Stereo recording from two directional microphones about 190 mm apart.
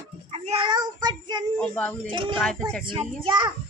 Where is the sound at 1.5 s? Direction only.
5° left (ahead or behind).